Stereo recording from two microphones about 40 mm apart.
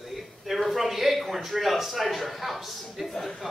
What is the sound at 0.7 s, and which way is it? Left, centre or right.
A man's voice, centre.